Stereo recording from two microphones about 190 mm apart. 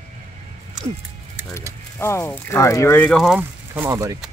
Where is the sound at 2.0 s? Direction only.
15° left (ahead or behind); by 4.2 s 15° right (ahead or behind).